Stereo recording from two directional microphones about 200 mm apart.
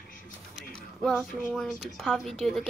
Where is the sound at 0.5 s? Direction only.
Centre (ahead or behind).